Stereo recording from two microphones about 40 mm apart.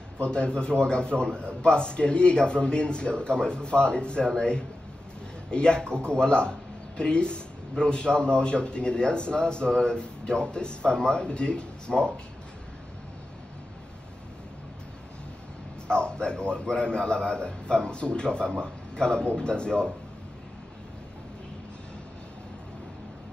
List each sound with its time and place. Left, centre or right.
0.2 s a man's voice: left
15.9 s a man's voice: left